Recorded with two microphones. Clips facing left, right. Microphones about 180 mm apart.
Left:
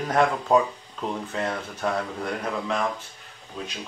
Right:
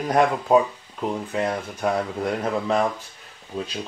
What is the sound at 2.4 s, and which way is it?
Speech, 35° right (ahead or behind).